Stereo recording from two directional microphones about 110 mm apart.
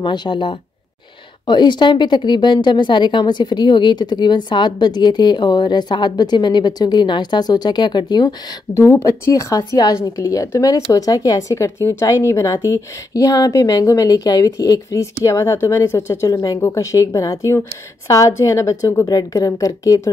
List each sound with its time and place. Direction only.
0.0 s a woman's voice: 45° left (ahead or behind)
8.7 s a woman's voice: 25° left (ahead or behind)